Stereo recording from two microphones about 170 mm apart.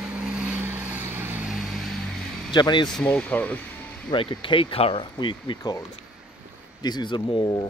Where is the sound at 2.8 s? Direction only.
5° left (ahead or behind).